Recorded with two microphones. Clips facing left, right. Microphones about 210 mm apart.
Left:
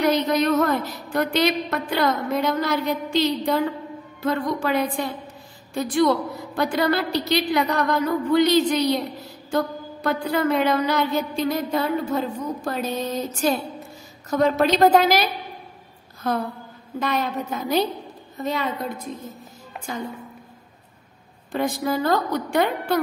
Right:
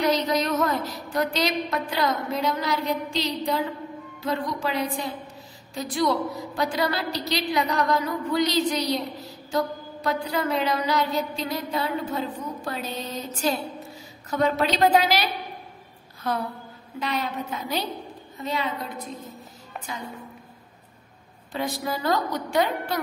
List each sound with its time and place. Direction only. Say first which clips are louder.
0.0 s a woman's voice: left 3 dB; 55° left (ahead or behind)
10.0 s a woman's voice: left 4 dB; 55° left (ahead or behind)
17.0 s a woman's voice: left 4 dB; 45° left (ahead or behind)
21.5 s a woman's voice: left 5 dB; 50° left (ahead or behind)